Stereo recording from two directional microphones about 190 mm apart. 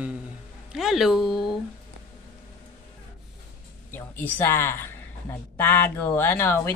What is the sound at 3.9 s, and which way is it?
Speech, 10° left (ahead or behind).